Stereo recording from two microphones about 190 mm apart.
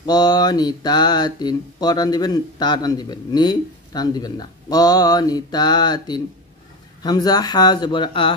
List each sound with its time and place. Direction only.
0.0 s speech: 20° left (ahead or behind)